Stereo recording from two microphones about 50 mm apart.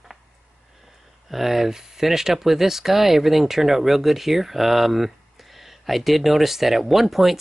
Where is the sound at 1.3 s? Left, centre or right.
Centre.